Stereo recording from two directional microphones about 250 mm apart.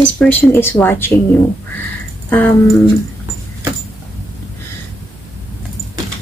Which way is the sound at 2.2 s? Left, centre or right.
Centre.